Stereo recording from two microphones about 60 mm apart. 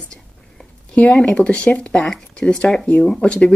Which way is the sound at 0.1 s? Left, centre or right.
Centre.